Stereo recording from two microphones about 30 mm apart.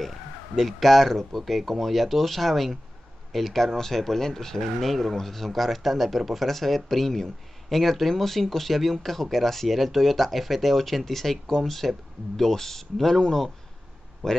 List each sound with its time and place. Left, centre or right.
0.6 s speech: centre
14.2 s speech: centre